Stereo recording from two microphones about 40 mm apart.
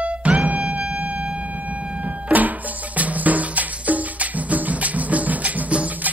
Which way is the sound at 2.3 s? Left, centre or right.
Right.